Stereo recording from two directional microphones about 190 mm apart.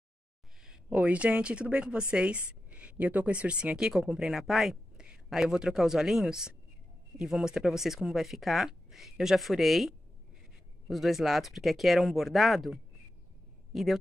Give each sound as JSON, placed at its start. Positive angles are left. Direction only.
{"t": 0.6, "sound": "speech", "side_deg": -5}